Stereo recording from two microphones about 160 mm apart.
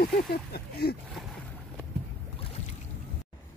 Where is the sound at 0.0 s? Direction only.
75° left (ahead or behind).